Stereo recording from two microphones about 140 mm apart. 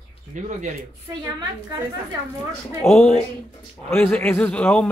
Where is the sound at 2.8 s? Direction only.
20° left (ahead or behind).